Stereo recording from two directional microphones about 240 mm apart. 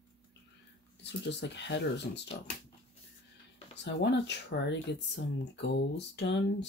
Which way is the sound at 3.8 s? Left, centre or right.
Left.